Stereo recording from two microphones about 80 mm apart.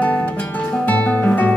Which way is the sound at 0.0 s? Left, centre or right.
Centre.